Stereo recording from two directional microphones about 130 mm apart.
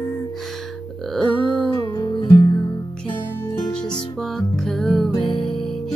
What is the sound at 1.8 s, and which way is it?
Music, 30° left (ahead or behind).